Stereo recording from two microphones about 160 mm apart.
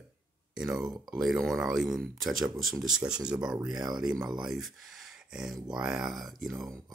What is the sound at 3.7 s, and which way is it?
Speech, 25° right (ahead or behind).